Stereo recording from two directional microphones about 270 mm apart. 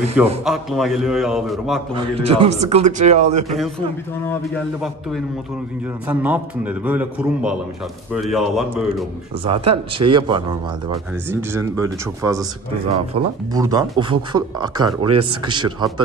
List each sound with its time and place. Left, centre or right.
0.2 s a man's voice: centre
2.2 s speech: right
6.0 s a man's voice: centre
9.4 s speech: right